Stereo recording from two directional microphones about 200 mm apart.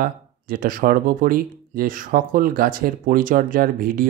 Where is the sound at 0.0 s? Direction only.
45° right (ahead or behind).